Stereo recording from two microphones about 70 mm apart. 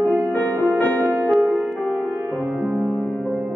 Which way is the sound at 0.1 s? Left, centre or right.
Left.